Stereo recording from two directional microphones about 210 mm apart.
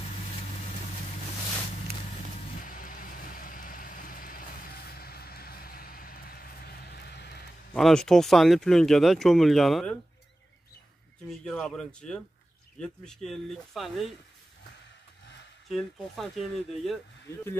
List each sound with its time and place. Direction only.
2.6 s vehicle: 40° left (ahead or behind)
7.7 s speech: centre (ahead or behind)
11.2 s speech: 5° left (ahead or behind)
15.7 s speech: centre (ahead or behind)